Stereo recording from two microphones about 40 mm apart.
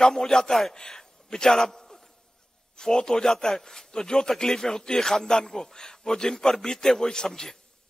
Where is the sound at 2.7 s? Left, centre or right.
Centre.